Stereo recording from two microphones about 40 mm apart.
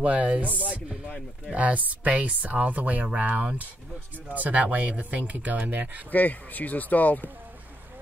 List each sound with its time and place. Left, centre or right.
0.0 s speech: right
6.1 s speech: left